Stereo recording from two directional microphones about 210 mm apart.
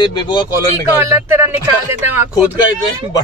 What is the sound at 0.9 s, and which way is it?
Speech, 10° right (ahead or behind).